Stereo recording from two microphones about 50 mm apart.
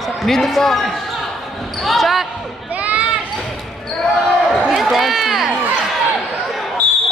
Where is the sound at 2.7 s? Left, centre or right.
Right.